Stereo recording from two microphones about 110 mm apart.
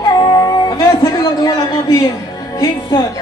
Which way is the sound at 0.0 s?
35° left (ahead or behind).